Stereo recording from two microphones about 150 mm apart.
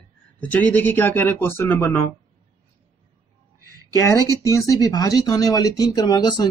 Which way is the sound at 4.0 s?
20° left (ahead or behind).